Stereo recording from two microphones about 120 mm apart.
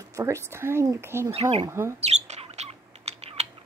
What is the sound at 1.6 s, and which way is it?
Speech, 25° right (ahead or behind).